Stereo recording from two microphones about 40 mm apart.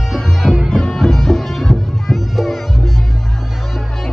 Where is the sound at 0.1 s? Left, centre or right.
Centre.